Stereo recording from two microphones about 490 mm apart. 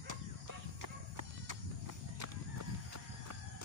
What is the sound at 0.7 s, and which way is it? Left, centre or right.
Horse, right.